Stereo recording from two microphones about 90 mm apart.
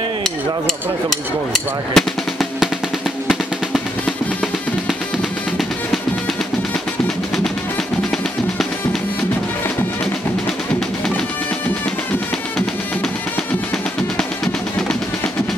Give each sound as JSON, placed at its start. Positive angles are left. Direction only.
{"t": 1.5, "sound": "drum", "side_deg": 0}
{"t": 14.1, "sound": "music", "side_deg": 5}